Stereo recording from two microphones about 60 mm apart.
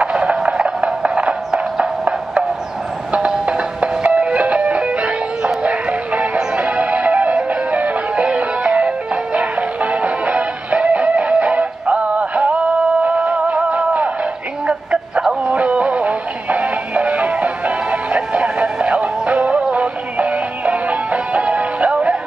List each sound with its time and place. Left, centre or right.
0.0 s music: centre